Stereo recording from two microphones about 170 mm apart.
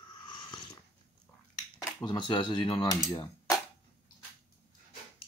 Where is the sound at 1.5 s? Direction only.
20° left (ahead or behind).